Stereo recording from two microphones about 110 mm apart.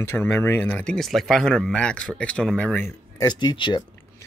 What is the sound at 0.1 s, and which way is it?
Speech, 20° left (ahead or behind).